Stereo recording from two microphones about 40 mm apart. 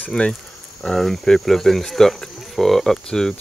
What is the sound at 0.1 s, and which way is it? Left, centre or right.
Speech, centre.